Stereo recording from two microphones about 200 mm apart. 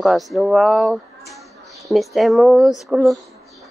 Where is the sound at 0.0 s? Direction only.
Centre (ahead or behind).